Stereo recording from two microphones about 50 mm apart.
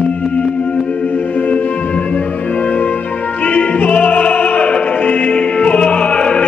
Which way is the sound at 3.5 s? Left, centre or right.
Left.